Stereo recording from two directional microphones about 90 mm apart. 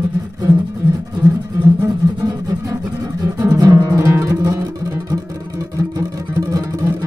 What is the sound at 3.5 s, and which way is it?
Music, 35° right (ahead or behind).